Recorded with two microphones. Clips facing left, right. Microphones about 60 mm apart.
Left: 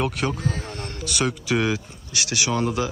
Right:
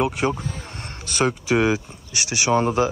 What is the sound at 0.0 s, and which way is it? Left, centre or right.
Speech, right.